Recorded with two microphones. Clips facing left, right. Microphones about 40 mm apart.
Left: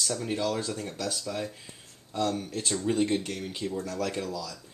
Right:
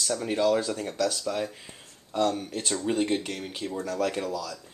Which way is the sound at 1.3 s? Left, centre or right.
Right.